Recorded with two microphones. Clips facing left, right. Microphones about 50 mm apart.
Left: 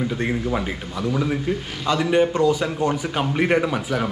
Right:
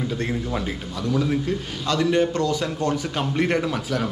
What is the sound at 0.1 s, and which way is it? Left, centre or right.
A man's voice, centre.